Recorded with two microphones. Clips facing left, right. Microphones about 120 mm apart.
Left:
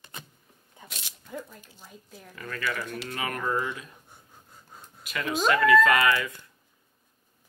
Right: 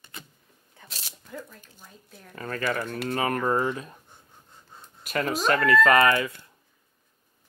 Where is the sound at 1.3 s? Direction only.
10° left (ahead or behind).